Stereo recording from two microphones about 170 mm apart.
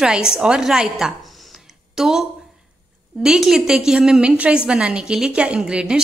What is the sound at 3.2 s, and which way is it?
A woman's voice, 5° right (ahead or behind).